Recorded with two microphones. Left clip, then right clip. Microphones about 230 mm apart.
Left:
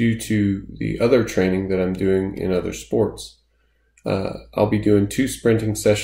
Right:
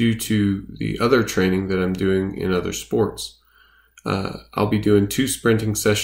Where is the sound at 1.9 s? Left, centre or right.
Right.